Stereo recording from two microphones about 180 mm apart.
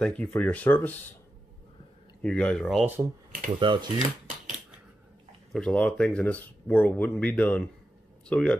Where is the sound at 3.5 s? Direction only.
25° right (ahead or behind).